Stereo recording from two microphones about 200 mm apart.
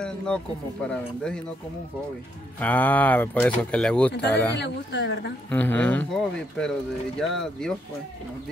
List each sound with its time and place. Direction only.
0.8 s speech: 5° left (ahead or behind)
2.6 s speech: 10° left (ahead or behind)
4.6 s speech: 60° left (ahead or behind)
5.5 s speech: 10° left (ahead or behind)